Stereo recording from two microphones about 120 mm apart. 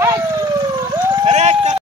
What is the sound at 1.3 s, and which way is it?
Run, 65° right (ahead or behind).